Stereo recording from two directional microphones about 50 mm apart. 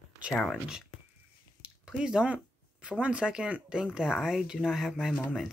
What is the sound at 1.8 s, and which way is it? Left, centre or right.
Speech, centre.